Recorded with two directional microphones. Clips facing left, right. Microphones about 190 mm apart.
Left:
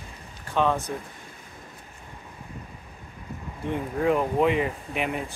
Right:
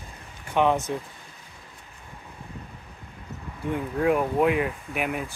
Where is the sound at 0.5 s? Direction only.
20° right (ahead or behind).